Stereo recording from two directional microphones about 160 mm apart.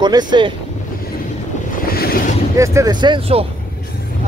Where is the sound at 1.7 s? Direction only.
70° left (ahead or behind).